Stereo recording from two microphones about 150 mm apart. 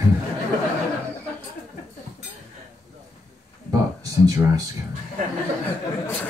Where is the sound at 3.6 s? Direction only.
25° right (ahead or behind).